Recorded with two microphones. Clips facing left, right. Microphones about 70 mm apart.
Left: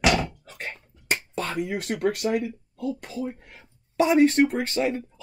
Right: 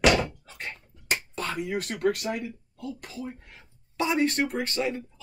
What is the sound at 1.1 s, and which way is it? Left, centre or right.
Finger snapping, left.